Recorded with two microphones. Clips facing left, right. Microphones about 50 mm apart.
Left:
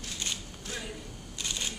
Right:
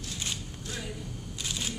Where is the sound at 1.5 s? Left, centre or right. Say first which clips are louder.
Right 1 dB; centre.